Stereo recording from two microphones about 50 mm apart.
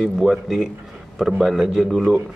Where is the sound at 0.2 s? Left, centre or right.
Centre.